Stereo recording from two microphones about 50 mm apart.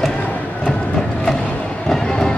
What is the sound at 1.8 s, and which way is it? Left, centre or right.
Run, centre.